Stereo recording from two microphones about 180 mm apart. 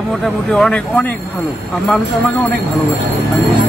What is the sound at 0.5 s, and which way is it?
Speech, 5° left (ahead or behind).